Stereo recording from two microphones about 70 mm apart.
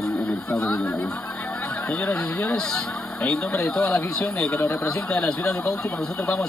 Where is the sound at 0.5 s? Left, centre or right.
Centre.